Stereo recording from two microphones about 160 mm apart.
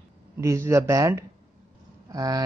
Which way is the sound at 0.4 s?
20° right (ahead or behind).